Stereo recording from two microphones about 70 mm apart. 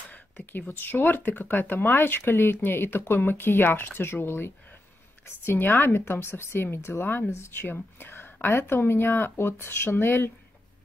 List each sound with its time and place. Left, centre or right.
0.1 s speech: left